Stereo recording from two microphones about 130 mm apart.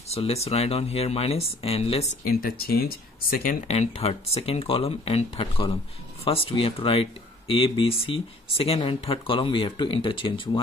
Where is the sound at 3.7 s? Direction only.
50° left (ahead or behind).